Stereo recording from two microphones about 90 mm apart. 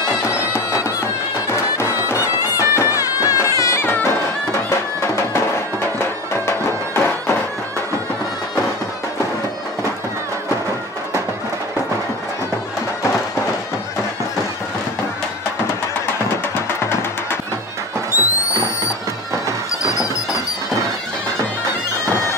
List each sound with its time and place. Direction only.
1.5 s music: 30° left (ahead or behind)
18.1 s music: 35° left (ahead or behind)